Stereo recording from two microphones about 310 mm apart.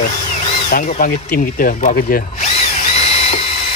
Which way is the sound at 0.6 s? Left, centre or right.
Left.